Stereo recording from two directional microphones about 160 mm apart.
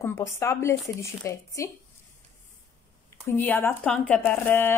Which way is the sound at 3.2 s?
10° left (ahead or behind).